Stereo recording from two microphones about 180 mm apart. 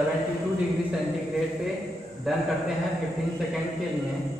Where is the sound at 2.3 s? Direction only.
Centre (ahead or behind).